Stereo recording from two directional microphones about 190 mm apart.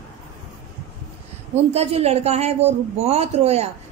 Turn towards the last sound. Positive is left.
turn(degrees=-35)  # may be behind; listen again after turning